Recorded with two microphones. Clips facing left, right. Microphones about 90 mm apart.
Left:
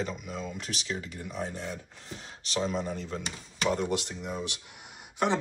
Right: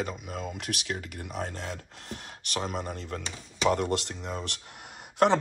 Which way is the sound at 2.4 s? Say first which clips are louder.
Left 2 dB; 55° right (ahead or behind).